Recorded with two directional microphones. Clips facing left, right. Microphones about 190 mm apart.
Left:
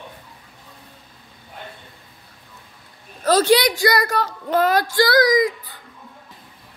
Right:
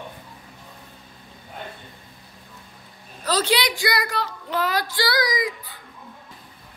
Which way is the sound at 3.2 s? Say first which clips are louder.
Left 7 dB; 50° left (ahead or behind).